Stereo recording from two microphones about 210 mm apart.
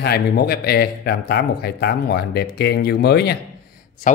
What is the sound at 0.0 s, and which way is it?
Speech, 50° left (ahead or behind).